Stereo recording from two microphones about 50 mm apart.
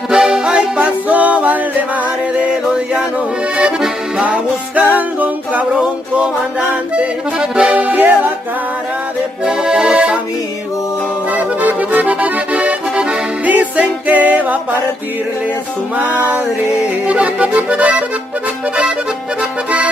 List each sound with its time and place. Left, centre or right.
0.1 s music: centre; by 1.9 s right
2.3 s music: centre
4.2 s music: right
7.0 s accordion: centre
7.7 s music: right
9.5 s accordion: centre
11.3 s accordion: right
13.5 s music: right
17.1 s accordion: right